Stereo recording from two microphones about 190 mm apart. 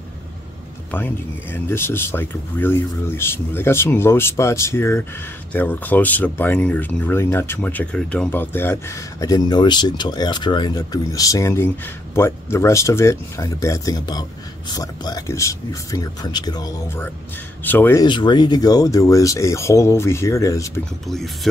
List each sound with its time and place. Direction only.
0.9 s speech: 10° left (ahead or behind)
18.0 s speech: 25° left (ahead or behind)